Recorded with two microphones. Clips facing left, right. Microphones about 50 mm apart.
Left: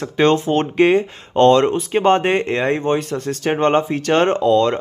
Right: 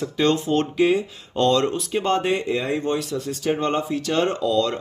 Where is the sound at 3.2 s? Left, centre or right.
Left.